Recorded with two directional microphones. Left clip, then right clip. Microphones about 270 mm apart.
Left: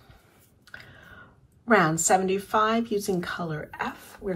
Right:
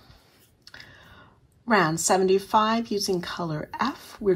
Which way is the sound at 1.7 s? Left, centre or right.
Centre.